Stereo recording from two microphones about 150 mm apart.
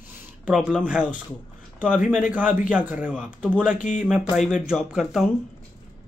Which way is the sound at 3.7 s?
55° left (ahead or behind).